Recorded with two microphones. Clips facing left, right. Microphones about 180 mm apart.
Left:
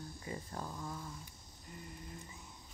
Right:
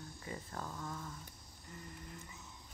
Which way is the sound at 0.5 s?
15° left (ahead or behind).